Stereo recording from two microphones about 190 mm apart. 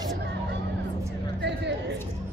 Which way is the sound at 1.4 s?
65° right (ahead or behind).